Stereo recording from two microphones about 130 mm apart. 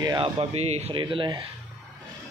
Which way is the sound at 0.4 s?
55° right (ahead or behind).